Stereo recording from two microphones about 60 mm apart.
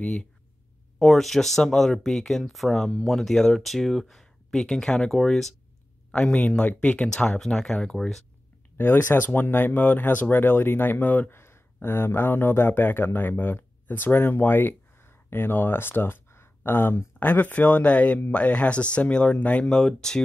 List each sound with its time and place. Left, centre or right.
0.0 s speech: centre
0.9 s speech: centre
6.1 s speech: left
7.2 s speech: centre
8.7 s speech: left
11.2 s speech: left
17.2 s speech: left
19.7 s speech: centre